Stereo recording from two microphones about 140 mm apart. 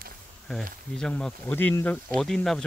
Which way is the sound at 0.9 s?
5° left (ahead or behind).